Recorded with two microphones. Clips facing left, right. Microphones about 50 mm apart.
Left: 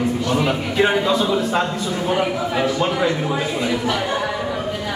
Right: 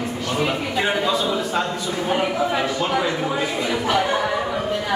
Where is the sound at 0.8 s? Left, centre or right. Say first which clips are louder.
Left 5 dB; centre.